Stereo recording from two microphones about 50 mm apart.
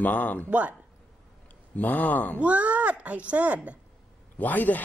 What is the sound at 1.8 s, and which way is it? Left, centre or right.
Speech, left.